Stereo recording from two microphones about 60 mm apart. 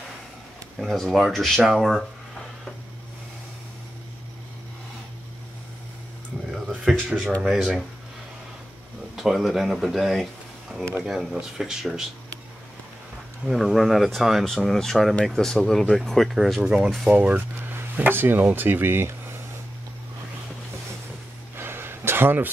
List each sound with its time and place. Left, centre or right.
0.7 s speech: centre
1.6 s speech: centre
6.5 s a sound: centre
7.1 s speech: centre
9.1 s speech: centre
13.5 s speech: centre
14.4 s speech: centre
17.1 s speech: right
17.6 s speech: right
21.5 s a sound: right